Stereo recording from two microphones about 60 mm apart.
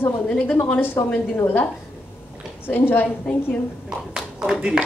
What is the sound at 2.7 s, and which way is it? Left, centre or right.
Speech, left.